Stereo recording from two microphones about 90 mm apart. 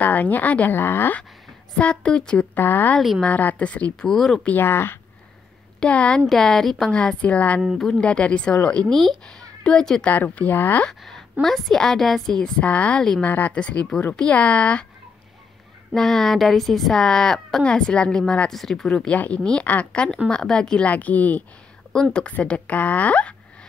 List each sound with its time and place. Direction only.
0.0 s a woman's voice: 20° left (ahead or behind)
1.8 s speech: 15° left (ahead or behind)
2.5 s a woman's voice: 20° left (ahead or behind)
3.0 s a woman's voice: centre (ahead or behind)
3.3 s speech: 15° left (ahead or behind)
4.5 s a woman's voice: 25° left (ahead or behind)
5.8 s speech: 15° left (ahead or behind)
7.6 s a woman's voice: centre (ahead or behind)
10.0 s a woman's voice: 20° left (ahead or behind)
10.9 s a woman's voice: 5° left (ahead or behind)
15.9 s a woman's voice: 5° left (ahead or behind)